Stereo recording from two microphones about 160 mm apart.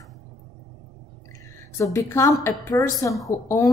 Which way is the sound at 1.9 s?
20° left (ahead or behind).